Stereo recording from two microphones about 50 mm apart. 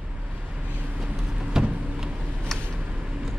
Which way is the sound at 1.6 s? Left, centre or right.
Centre.